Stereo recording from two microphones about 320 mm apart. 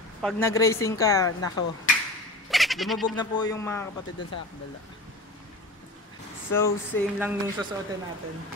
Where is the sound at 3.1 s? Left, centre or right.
Centre.